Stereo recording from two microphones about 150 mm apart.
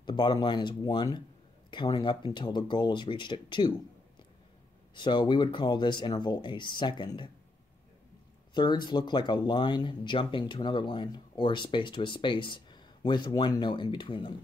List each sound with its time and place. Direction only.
0.0 s speech: 30° left (ahead or behind)
4.9 s speech: 30° left (ahead or behind)
8.5 s speech: 30° left (ahead or behind)